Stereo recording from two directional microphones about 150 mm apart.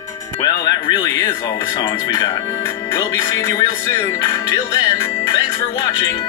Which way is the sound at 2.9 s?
20° left (ahead or behind).